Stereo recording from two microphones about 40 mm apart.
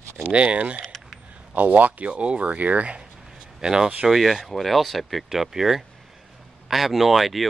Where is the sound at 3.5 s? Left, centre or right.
Centre.